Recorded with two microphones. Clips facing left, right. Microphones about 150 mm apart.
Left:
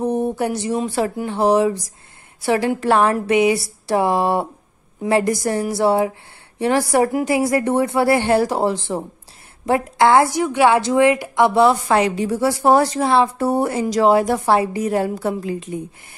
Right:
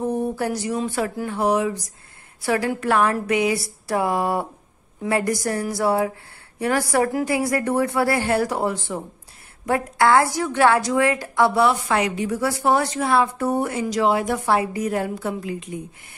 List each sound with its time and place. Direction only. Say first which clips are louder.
0.0 s a woman's voice: left 3 dB; 20° left (ahead or behind)
11.6 s speech: left 4 dB; 30° left (ahead or behind)